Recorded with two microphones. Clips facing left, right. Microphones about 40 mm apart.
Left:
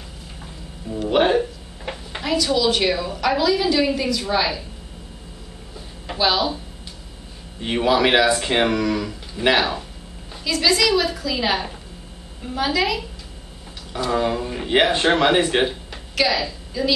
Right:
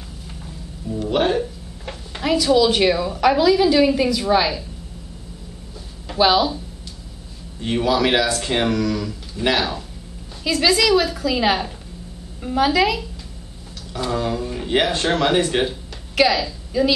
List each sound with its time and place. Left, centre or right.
0.8 s music: centre
2.2 s a woman's voice: centre
6.1 s speech: centre
7.6 s speech: centre
10.4 s a woman's voice: centre
14.1 s speech: centre
16.2 s a woman's voice: centre